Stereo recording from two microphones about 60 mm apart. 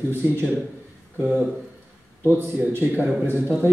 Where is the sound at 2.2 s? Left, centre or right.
Right.